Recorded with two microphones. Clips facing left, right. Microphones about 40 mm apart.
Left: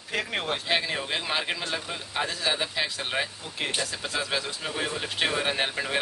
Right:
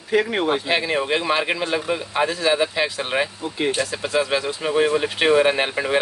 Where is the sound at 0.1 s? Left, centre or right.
Centre.